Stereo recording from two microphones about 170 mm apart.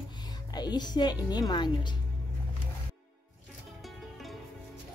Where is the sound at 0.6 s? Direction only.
25° left (ahead or behind).